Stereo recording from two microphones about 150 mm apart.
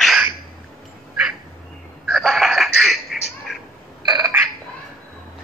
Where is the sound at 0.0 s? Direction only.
Centre (ahead or behind).